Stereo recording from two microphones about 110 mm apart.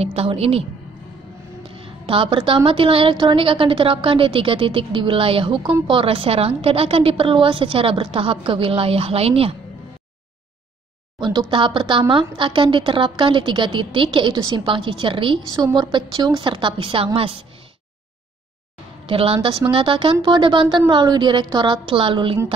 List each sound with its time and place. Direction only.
0.0 s a woman's voice: 60° right (ahead or behind)
1.8 s a woman's voice: 55° right (ahead or behind)
11.1 s a woman's voice: 45° right (ahead or behind)
15.5 s a woman's voice: 35° right (ahead or behind); by 17.5 s 55° right (ahead or behind)
19.0 s a woman's voice: 60° right (ahead or behind)